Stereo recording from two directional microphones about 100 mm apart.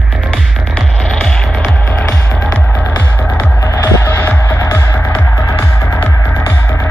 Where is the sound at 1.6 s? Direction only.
20° left (ahead or behind).